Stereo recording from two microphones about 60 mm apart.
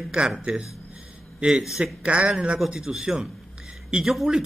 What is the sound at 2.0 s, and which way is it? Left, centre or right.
A man's voice, centre.